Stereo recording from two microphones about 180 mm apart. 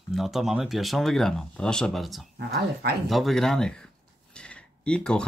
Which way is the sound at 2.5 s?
65° right (ahead or behind).